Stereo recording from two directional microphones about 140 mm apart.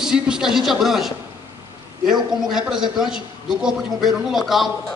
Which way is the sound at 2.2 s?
30° right (ahead or behind).